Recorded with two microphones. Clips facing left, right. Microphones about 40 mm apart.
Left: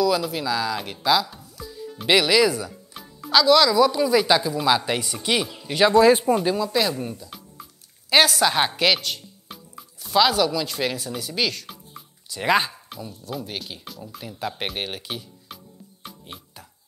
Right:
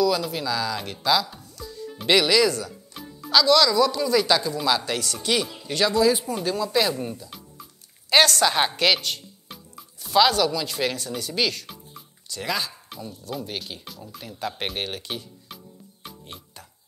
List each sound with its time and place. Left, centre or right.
0.0 s speech: centre
5.9 s speech: left
6.3 s a woman's voice: centre
12.4 s speech: left
12.9 s speech: centre